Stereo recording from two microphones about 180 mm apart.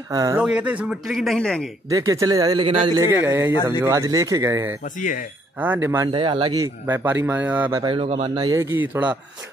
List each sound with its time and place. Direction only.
0.1 s speech: 20° right (ahead or behind)
0.4 s a man's voice: 5° right (ahead or behind)
1.9 s speech: 20° right (ahead or behind)
3.2 s speech: 10° right (ahead or behind)
4.8 s speech: 45° left (ahead or behind)
5.6 s speech: 10° right (ahead or behind)
6.1 s speech: 30° right (ahead or behind)
6.6 s speech: 15° right (ahead or behind)
7.8 s speech: 30° right (ahead or behind)
8.5 s speech: 15° right (ahead or behind)